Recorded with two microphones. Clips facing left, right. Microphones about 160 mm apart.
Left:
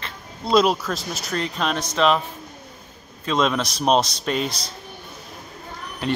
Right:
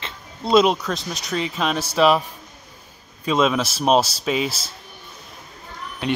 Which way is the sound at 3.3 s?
5° right (ahead or behind).